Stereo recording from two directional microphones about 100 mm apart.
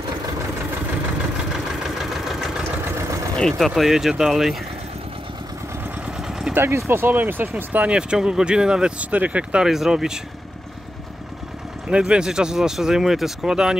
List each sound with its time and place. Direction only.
1.8 s vehicle: centre (ahead or behind)
2.8 s vehicle: 25° right (ahead or behind)
3.3 s speech: 5° left (ahead or behind)
6.5 s speech: 25° right (ahead or behind); by 10.1 s 5° right (ahead or behind)
11.9 s speech: 10° right (ahead or behind)